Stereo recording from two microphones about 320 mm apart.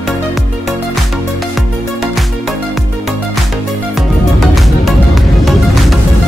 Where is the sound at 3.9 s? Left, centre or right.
Centre.